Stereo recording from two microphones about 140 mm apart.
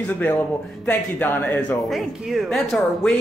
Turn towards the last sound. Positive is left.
turn(degrees=0)  # may be behind; listen again after turning